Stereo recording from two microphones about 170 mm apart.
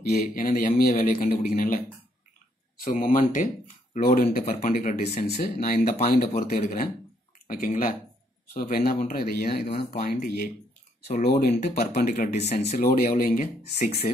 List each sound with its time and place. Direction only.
0.1 s a man's voice: 55° left (ahead or behind)
2.8 s a man's voice: 55° left (ahead or behind)
5.3 s speech: 60° left (ahead or behind)
12.1 s a man's voice: 40° left (ahead or behind)